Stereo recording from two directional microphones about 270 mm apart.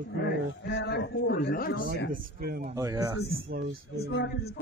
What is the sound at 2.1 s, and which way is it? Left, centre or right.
Speech, right.